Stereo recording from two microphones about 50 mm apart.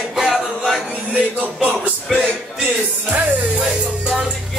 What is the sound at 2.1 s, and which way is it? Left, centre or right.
Music, centre.